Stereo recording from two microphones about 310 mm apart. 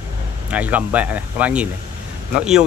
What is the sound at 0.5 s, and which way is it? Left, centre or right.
Speech, centre.